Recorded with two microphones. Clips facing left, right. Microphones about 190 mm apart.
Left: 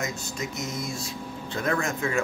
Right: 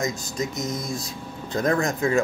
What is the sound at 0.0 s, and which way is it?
Speech, 35° right (ahead or behind).